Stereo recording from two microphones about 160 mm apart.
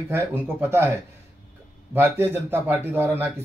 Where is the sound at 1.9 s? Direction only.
15° right (ahead or behind).